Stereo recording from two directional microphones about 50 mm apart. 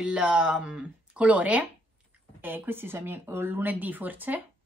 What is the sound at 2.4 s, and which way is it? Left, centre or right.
A woman's voice, right.